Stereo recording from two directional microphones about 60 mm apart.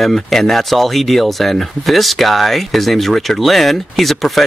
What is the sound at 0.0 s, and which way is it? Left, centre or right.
Speech, centre.